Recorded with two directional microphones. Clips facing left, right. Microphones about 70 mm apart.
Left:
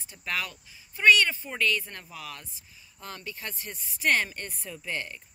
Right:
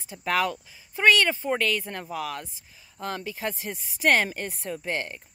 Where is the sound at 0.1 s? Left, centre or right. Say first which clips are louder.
Right 10 dB; right.